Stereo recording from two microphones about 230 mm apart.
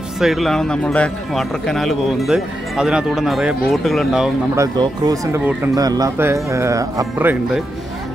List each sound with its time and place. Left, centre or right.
0.2 s speech: centre
4.6 s speech: centre